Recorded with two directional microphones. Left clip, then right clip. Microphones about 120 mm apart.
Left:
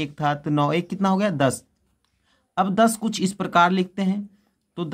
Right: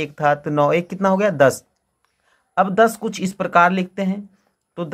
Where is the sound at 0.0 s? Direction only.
20° left (ahead or behind).